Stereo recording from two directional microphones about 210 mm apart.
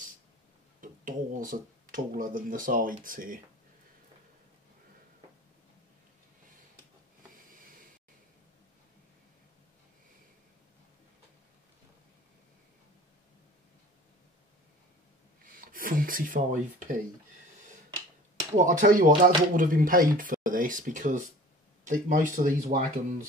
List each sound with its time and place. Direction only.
0.7 s speech: 40° right (ahead or behind)
15.4 s a sound: 40° right (ahead or behind)
18.6 s speech: 35° right (ahead or behind)